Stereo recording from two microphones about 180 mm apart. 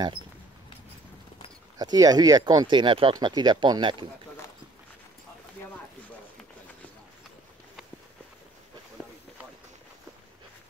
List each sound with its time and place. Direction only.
1.8 s speech: 20° right (ahead or behind)